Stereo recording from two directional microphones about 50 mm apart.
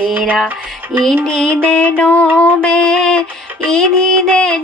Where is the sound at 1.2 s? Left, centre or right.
Centre; by 2.2 s left.